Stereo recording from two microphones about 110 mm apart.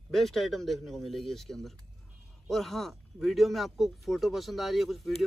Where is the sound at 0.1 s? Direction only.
Centre (ahead or behind).